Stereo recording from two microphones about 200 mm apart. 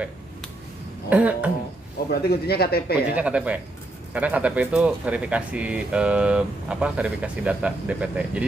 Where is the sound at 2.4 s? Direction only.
50° left (ahead or behind).